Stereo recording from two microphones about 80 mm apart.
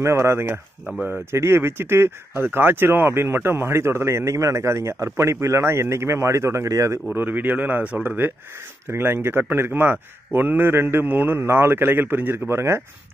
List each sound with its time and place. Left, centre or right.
0.0 s speech: right
7.2 s a man's voice: right